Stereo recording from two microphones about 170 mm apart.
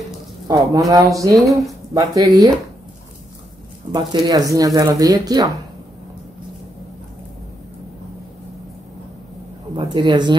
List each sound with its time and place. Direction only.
0.5 s speech: 20° right (ahead or behind)
3.9 s speech: 20° right (ahead or behind)
9.8 s speech: 25° right (ahead or behind)